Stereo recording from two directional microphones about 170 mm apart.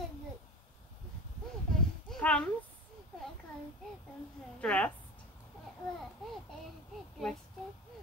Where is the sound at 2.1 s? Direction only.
5° left (ahead or behind).